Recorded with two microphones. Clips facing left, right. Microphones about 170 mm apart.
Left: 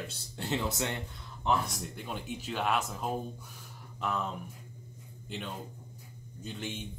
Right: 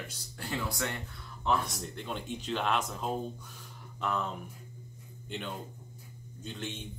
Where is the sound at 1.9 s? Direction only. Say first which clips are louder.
Right 3 dB; 10° left (ahead or behind).